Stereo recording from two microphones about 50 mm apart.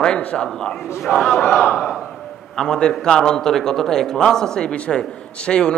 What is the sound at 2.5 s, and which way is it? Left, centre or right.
A man's voice, centre.